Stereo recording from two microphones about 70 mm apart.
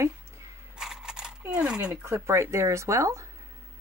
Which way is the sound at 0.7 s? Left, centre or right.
Centre.